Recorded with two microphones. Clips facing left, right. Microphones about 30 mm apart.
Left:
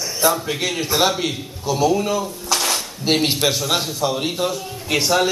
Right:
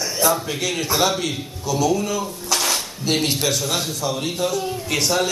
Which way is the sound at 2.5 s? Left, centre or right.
Centre.